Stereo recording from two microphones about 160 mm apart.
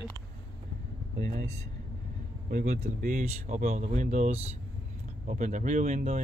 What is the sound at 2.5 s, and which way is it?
Speech, 50° right (ahead or behind).